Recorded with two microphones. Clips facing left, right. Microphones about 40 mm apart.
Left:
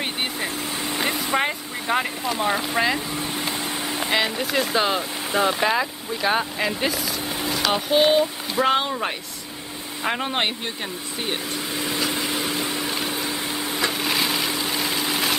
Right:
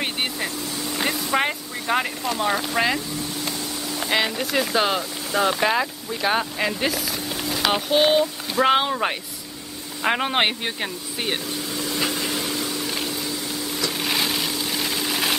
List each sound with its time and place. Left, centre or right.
1.3 s speech: centre
2.2 s speech: centre
3.2 s vehicle: left
4.1 s speech: centre; by 11.3 s right
11.7 s vehicle: left
12.2 s a sound: centre
13.9 s wood: centre
14.4 s vehicle: centre